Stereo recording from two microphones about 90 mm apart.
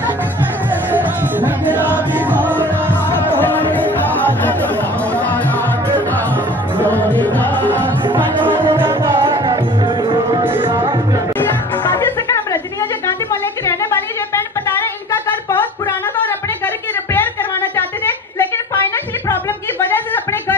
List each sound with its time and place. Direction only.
0.9 s music: 20° right (ahead or behind)
2.6 s music: 20° left (ahead or behind)
6.8 s music: 20° left (ahead or behind)
8.7 s music: 25° right (ahead or behind)
9.1 s music: 60° right (ahead or behind)
11.3 s music: 25° left (ahead or behind)
13.0 s music: 35° left (ahead or behind)
16.6 s a sound: 25° left (ahead or behind)